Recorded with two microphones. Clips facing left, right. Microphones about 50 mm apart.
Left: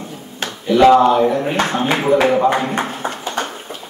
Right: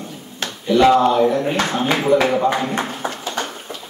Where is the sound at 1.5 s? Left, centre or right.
Left.